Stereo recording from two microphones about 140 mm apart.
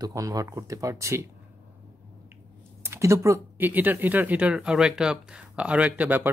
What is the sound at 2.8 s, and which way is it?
Speech, 20° right (ahead or behind).